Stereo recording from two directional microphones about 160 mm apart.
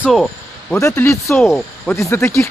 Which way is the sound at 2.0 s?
20° left (ahead or behind).